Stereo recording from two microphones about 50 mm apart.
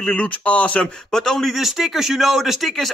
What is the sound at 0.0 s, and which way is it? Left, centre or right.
Speech, left.